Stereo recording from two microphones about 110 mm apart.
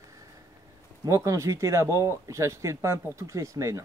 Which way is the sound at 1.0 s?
30° right (ahead or behind).